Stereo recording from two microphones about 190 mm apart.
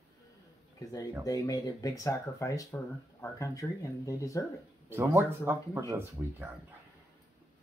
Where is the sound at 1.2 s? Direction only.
20° left (ahead or behind).